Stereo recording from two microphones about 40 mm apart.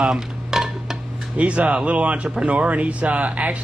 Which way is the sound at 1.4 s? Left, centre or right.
Right.